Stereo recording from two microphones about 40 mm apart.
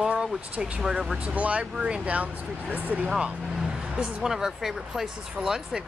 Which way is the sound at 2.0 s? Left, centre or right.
Right.